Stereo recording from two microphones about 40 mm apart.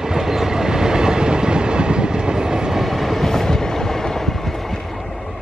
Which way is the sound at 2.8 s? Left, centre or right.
Centre.